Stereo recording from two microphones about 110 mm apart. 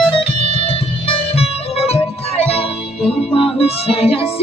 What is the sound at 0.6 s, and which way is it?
Music, 60° left (ahead or behind).